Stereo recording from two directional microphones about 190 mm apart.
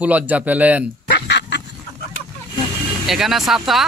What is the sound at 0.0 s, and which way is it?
Speech, 10° right (ahead or behind).